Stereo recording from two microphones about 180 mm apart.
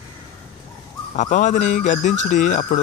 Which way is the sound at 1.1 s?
45° left (ahead or behind).